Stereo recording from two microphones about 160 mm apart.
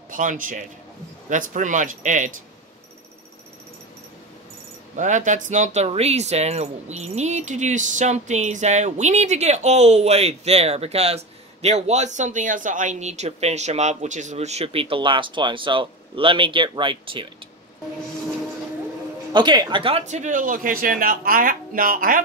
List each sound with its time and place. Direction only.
0.1 s speech: 55° right (ahead or behind)
4.9 s speech: 50° right (ahead or behind); by 17.3 s 30° right (ahead or behind)
19.3 s speech: 25° right (ahead or behind); by 22.2 s 60° right (ahead or behind)